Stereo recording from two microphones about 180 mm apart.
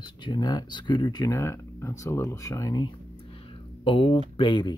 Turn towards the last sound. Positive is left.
turn(degrees=25)  # may be behind; listen again after turning